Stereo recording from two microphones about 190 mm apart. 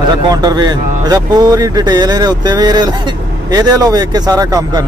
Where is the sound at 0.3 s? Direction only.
20° right (ahead or behind).